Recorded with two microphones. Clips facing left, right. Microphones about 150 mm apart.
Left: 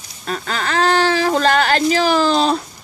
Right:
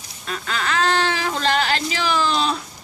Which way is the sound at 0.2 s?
40° left (ahead or behind).